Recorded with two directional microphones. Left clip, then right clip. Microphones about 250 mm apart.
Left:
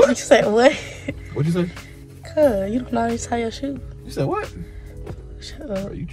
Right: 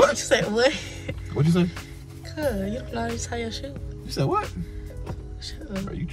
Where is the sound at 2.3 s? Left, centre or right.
Left.